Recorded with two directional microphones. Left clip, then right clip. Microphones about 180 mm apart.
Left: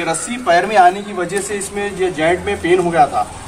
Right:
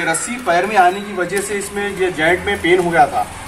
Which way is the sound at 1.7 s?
30° left (ahead or behind).